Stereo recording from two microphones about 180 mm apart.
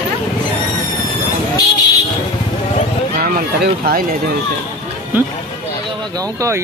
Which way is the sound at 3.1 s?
55° right (ahead or behind).